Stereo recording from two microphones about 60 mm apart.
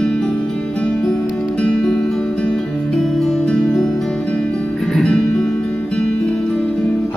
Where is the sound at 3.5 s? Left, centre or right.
Centre.